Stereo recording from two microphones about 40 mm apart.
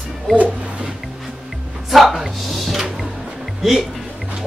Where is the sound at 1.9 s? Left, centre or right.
Centre.